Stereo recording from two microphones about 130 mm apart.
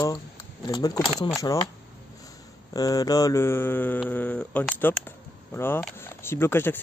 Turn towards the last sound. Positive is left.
turn(degrees=15)  # may be behind; listen again after turning